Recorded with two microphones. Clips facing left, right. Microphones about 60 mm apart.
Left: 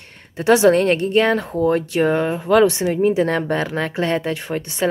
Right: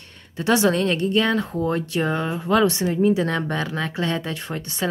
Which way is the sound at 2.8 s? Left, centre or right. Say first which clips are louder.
Left 2 dB; left.